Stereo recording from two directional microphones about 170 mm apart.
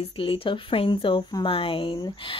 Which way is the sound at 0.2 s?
30° left (ahead or behind).